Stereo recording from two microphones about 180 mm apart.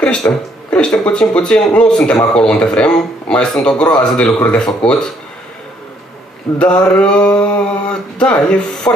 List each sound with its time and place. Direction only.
0.0 s speech: 5° left (ahead or behind)
6.6 s speech: 5° left (ahead or behind)